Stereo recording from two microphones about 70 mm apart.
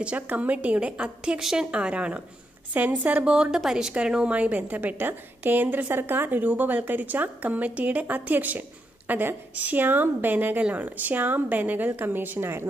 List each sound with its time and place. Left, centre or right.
0.0 s a woman's voice: right